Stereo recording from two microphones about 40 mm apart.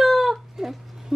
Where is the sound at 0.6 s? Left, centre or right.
Centre.